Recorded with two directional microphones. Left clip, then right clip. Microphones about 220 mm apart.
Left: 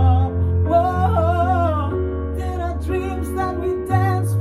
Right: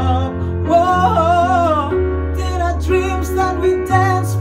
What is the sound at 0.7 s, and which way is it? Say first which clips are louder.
Music: right 5 dB; 5° right (ahead or behind).